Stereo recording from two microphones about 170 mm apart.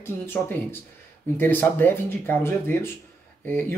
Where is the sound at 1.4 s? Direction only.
10° left (ahead or behind).